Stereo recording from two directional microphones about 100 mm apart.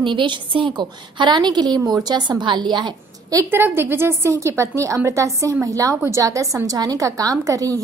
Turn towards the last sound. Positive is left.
turn(degrees=-35)  # may be behind; listen again after turning